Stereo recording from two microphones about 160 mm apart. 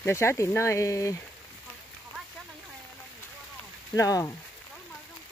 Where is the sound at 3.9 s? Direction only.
20° left (ahead or behind).